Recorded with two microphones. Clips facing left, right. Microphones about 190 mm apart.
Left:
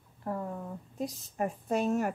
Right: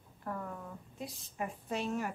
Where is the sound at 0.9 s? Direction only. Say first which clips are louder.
Left 8 dB; 40° left (ahead or behind).